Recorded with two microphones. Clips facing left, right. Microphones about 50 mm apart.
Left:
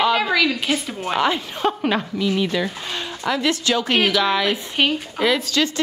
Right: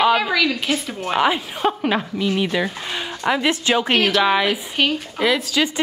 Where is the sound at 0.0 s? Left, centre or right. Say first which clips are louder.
Right 1 dB; centre.